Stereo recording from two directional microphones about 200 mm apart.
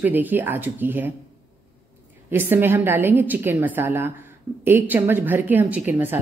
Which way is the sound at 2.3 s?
10° right (ahead or behind).